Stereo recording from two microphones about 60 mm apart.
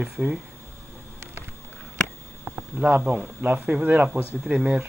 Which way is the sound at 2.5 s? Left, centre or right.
Right.